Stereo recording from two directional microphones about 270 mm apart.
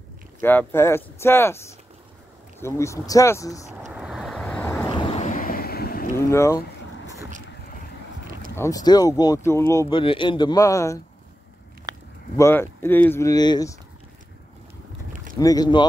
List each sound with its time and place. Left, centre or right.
0.4 s speech: centre
3.8 s vehicle: centre; by 6.0 s left
6.1 s speech: centre
8.5 s speech: centre
12.4 s speech: centre
15.3 s speech: centre